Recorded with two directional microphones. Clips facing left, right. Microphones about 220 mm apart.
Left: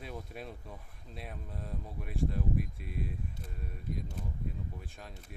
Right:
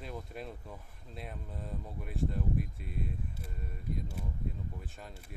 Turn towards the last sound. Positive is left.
turn(degrees=0)  # may be behind; listen again after turning